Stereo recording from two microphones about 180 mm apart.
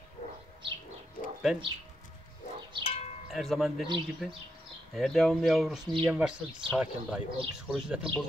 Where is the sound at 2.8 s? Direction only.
35° left (ahead or behind).